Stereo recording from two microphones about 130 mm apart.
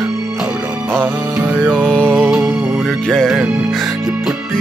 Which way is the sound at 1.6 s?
10° left (ahead or behind).